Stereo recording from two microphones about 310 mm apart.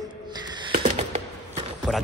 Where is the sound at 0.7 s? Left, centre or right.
Right.